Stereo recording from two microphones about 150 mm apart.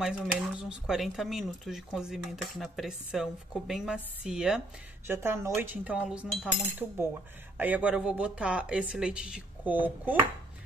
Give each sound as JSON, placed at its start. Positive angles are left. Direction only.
{"t": 0.0, "sound": "speech", "side_deg": -5}
{"t": 5.0, "sound": "speech", "side_deg": -15}